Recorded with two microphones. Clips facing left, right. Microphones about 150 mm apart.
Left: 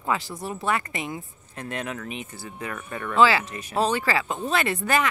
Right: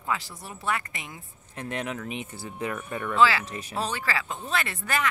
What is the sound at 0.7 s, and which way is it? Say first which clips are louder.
Speech: left 3 dB; 30° left (ahead or behind).